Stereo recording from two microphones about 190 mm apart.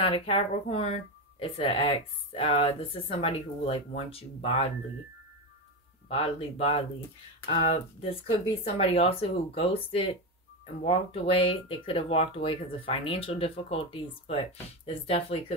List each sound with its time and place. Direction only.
0.0 s speech: 30° left (ahead or behind)
6.0 s speech: 30° left (ahead or behind)